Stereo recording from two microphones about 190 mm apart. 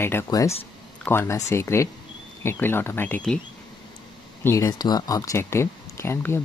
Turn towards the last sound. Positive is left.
turn(degrees=15)  # may be behind; listen again after turning